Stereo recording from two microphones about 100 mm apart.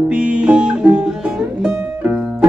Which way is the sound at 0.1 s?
10° right (ahead or behind).